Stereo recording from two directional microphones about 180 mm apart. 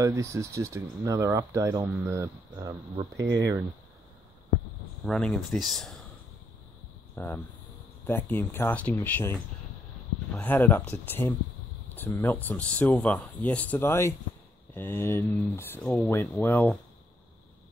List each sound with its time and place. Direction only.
0.0 s speech: 15° right (ahead or behind)
5.0 s speech: 5° left (ahead or behind)
7.2 s speech: 10° left (ahead or behind)